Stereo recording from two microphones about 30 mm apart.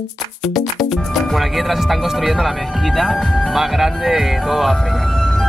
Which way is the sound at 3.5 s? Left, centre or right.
Centre.